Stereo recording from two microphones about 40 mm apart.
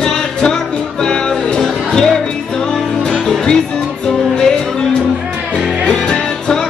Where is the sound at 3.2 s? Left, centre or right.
Centre.